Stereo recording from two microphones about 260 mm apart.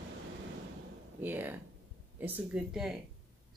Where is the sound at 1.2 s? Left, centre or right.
Centre.